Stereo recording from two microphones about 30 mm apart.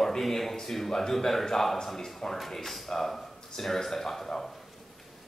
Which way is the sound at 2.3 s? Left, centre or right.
Centre.